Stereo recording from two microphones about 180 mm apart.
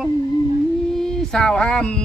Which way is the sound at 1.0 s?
5° left (ahead or behind).